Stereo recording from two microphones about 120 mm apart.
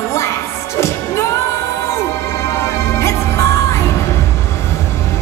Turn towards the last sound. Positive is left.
turn(degrees=25)  # may be behind; listen again after turning